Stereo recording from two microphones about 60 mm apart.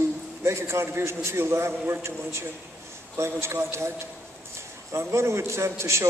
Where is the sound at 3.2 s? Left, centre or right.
Right.